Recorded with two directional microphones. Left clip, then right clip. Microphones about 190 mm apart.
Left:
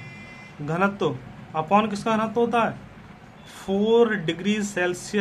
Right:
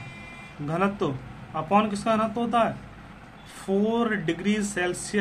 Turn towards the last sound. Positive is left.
turn(degrees=20)  # may be behind; listen again after turning